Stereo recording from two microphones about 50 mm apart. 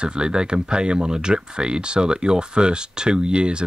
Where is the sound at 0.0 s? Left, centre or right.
Centre.